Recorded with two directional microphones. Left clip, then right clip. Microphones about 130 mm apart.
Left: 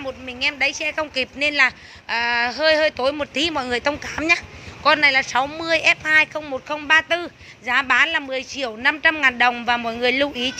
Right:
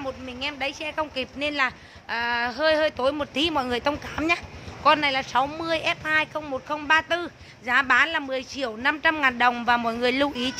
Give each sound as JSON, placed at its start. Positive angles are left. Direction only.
{"t": 0.3, "sound": "a woman's voice", "side_deg": 10}